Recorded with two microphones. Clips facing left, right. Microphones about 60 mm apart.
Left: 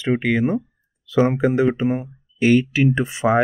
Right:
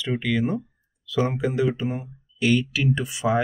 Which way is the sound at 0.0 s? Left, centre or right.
Left.